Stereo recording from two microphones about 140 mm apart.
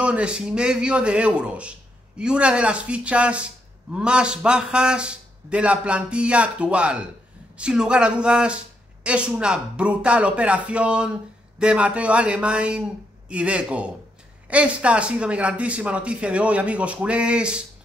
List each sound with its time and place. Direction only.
0.0 s speech: 10° right (ahead or behind)